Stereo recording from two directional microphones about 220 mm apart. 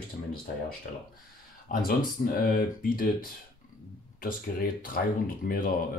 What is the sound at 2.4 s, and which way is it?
Speech, 40° left (ahead or behind).